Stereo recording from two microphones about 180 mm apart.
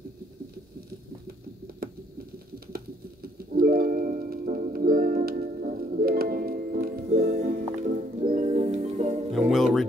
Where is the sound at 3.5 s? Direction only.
55° right (ahead or behind); by 9.3 s 40° right (ahead or behind).